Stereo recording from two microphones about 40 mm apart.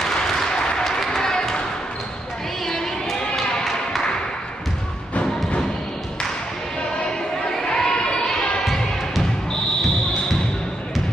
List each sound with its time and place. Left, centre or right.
0.0 s a sound: centre
2.6 s crowd: centre
7.4 s crowd: centre